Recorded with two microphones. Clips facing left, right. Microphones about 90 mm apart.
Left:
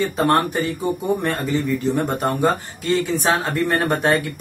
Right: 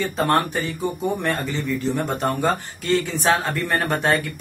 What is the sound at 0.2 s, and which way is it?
Speech, 5° left (ahead or behind).